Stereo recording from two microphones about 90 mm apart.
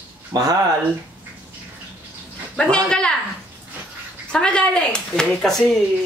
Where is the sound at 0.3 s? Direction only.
40° right (ahead or behind).